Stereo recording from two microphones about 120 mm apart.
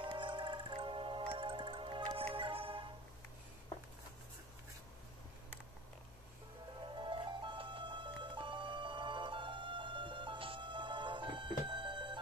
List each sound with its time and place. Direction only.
0.0 s music: 45° right (ahead or behind)
7.0 s music: 40° right (ahead or behind)